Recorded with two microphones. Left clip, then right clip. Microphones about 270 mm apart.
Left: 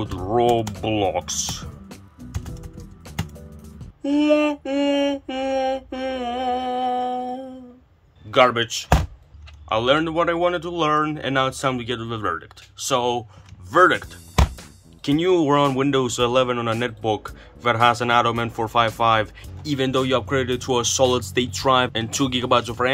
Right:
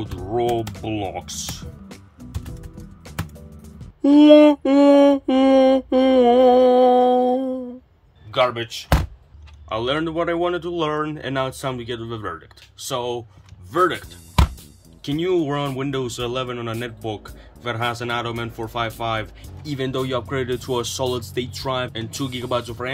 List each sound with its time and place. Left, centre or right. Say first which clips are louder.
0.1 s typing: left 3 dB; centre
4.0 s mantra: right 8 dB; right
8.3 s speech: left 4 dB; centre
15.0 s speech: left 3 dB; centre